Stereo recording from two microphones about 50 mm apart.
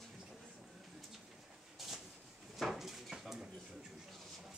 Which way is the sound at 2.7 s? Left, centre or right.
Centre.